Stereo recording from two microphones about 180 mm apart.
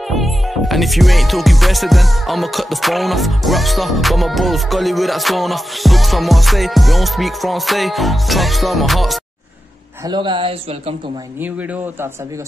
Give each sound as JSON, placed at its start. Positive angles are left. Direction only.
{"t": 0.1, "sound": "music", "side_deg": 0}
{"t": 10.0, "sound": "speech", "side_deg": -25}
{"t": 11.4, "sound": "speech", "side_deg": -10}